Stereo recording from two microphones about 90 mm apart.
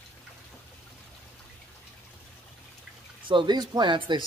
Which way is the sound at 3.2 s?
60° right (ahead or behind).